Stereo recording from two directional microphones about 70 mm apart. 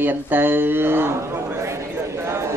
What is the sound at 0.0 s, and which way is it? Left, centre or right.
A man's voice, right.